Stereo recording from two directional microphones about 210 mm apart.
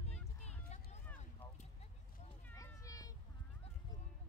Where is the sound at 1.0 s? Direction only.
10° left (ahead or behind).